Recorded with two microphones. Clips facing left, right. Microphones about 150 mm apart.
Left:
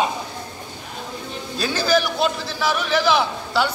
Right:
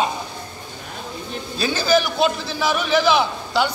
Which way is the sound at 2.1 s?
5° right (ahead or behind).